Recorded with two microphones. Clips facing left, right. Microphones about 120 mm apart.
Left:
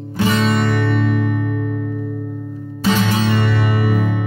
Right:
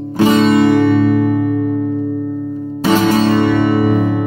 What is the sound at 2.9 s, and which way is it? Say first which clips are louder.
Music: right 5 dB; 40° right (ahead or behind).